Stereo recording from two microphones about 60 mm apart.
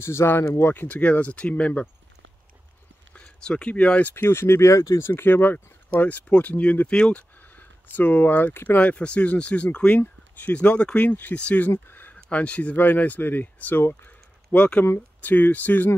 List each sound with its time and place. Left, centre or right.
0.0 s speech: left
0.7 s speech: left
3.1 s speech: centre
4.1 s speech: left
5.0 s speech: left
11.1 s speech: left
11.3 s speech: left
11.9 s a sound: left
12.7 s speech: left